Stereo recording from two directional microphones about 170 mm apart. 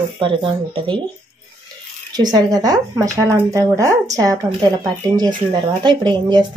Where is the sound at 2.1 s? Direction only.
25° right (ahead or behind).